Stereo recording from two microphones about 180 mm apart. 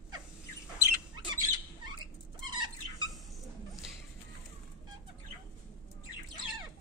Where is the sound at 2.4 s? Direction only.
25° right (ahead or behind).